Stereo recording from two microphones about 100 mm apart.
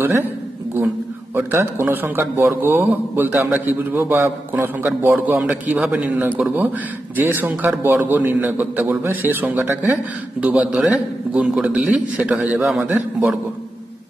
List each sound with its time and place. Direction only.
0.0 s a man's voice: 20° right (ahead or behind)
1.3 s a man's voice: 25° right (ahead or behind)